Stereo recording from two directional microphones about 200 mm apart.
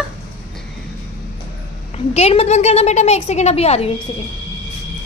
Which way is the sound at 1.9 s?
30° left (ahead or behind).